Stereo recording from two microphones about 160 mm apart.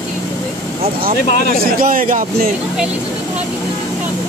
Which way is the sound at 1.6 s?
60° right (ahead or behind).